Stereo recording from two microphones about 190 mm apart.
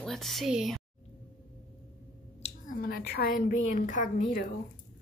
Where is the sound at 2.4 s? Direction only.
45° left (ahead or behind).